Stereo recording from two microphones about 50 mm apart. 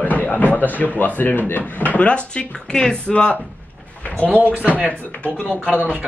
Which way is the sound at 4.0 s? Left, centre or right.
Left.